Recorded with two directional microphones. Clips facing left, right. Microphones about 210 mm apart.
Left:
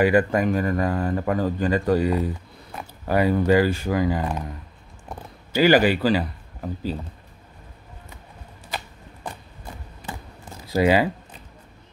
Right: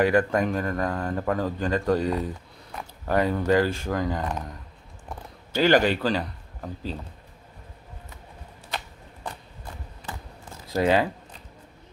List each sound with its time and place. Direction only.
0.0 s speech: 5° left (ahead or behind)
8.6 s a sound: 5° left (ahead or behind)
10.7 s speech: 5° left (ahead or behind)